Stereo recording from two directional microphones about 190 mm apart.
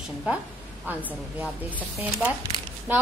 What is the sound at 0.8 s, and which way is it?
Speech, 10° right (ahead or behind).